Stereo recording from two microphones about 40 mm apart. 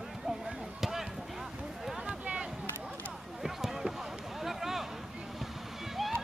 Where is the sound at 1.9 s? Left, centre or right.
Right.